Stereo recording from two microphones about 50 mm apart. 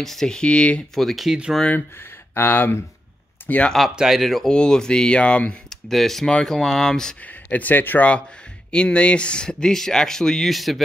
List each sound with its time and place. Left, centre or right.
0.0 s speech: centre
0.4 s speech: left
0.9 s speech: centre
2.3 s speech: left
3.4 s speech: left
3.9 s speech: centre
4.2 s speech: centre
4.5 s speech: centre
5.7 s speech: centre
7.4 s speech: left
8.7 s speech: left; by 10.8 s centre